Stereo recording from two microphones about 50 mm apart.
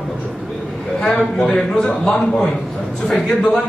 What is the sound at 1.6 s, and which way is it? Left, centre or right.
A man's voice, centre.